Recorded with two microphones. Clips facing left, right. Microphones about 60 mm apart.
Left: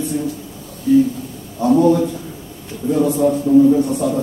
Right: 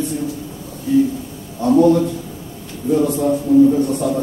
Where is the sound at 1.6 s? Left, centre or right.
Centre.